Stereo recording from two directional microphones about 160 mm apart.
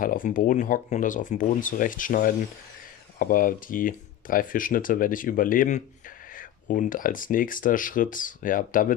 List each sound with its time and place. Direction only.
0.0 s speech: 60° left (ahead or behind)